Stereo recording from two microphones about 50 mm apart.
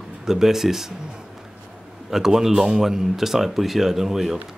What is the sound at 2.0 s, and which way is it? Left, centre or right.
Speech, centre.